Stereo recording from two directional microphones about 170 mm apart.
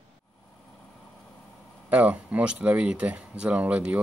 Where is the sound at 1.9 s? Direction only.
10° right (ahead or behind).